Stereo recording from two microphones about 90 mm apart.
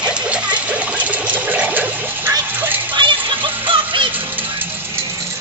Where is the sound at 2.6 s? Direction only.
20° right (ahead or behind).